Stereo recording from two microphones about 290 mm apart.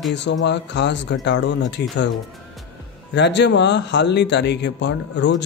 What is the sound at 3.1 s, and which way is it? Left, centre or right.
Speech, left.